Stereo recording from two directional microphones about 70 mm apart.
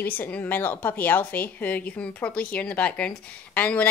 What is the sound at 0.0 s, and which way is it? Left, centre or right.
A woman's voice, left.